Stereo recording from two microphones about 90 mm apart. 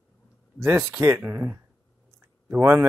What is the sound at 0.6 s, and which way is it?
Speech, 30° right (ahead or behind).